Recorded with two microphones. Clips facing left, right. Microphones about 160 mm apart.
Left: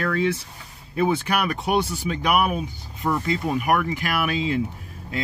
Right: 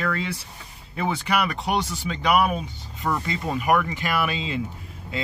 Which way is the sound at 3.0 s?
5° left (ahead or behind).